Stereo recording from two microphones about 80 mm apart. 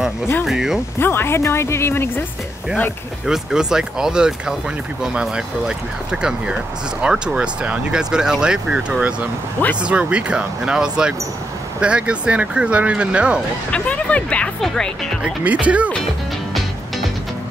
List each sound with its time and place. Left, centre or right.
0.5 s speech: centre
0.9 s speech: left
3.3 s speech: centre
13.7 s speech: centre
15.2 s speech: centre